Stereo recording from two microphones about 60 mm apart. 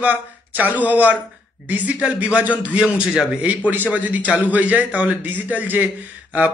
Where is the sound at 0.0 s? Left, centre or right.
Right.